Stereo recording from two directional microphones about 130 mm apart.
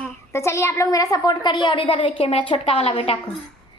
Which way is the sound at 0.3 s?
20° left (ahead or behind).